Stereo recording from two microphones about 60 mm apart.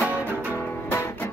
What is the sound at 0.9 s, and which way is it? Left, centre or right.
Music, left.